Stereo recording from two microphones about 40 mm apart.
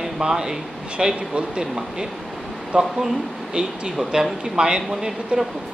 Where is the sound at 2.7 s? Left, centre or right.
Right.